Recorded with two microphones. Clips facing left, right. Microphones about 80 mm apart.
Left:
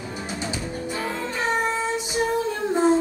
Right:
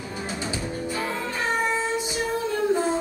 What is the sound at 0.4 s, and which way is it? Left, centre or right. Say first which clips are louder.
Music: even; left.